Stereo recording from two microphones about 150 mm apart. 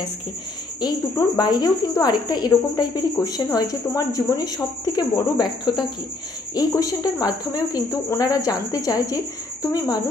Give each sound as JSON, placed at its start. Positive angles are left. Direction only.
{"t": 0.7, "sound": "speech", "side_deg": 25}